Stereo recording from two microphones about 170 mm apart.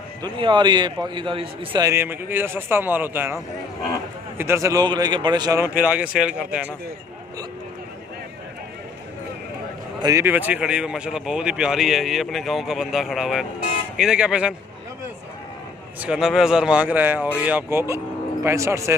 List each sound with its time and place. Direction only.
0.2 s a man's voice: 30° right (ahead or behind)
1.9 s speech: 15° right (ahead or behind)
4.4 s a man's voice: 15° right (ahead or behind)
5.8 s speech: 10° right (ahead or behind)
9.9 s a man's voice: 20° right (ahead or behind)
16.0 s speech: 5° right (ahead or behind)